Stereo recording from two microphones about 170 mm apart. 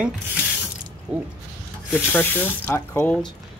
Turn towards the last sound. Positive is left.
turn(degrees=5)  # may be behind; listen again after turning